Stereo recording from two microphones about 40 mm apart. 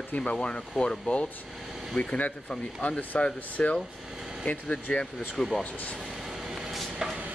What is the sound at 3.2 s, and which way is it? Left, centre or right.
Speech, left.